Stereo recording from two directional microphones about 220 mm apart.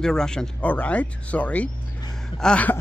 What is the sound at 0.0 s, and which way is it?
Speech, 5° left (ahead or behind).